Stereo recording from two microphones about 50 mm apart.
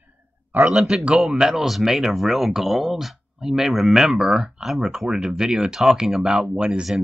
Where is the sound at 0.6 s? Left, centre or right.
Centre.